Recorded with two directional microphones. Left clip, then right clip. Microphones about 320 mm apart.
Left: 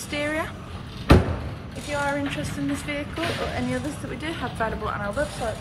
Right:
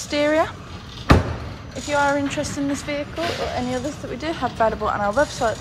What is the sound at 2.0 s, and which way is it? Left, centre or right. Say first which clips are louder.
A woman's voice: right 4 dB; centre.